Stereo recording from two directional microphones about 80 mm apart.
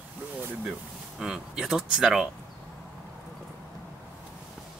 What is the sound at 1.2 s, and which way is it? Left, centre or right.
Speech, centre.